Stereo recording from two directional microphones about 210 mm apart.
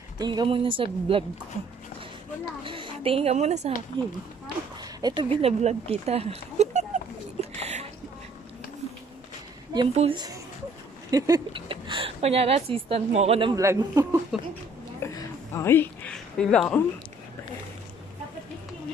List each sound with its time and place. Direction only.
0.2 s a woman's voice: 20° right (ahead or behind)
2.6 s a woman's voice: 25° right (ahead or behind)
3.9 s a woman's voice: 20° right (ahead or behind)
5.4 s a sound: 30° right (ahead or behind)
9.9 s a woman's voice: 25° right (ahead or behind)
14.3 s speech: 5° right (ahead or behind)
15.0 s a sound: 15° left (ahead or behind)